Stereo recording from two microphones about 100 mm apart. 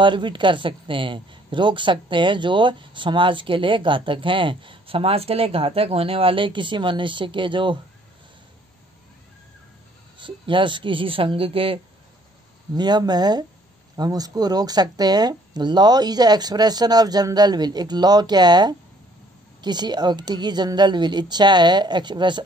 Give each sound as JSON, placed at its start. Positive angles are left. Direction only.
{"t": 0.0, "sound": "speech", "side_deg": -55}
{"t": 10.1, "sound": "speech", "side_deg": -55}
{"t": 12.7, "sound": "speech", "side_deg": -45}